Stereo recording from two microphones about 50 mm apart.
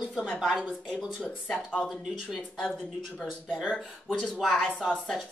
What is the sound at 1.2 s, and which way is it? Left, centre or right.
Speech, left.